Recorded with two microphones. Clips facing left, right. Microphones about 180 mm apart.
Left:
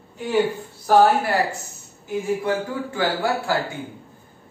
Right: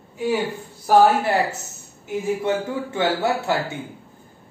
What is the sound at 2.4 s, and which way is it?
A man's voice, 25° right (ahead or behind).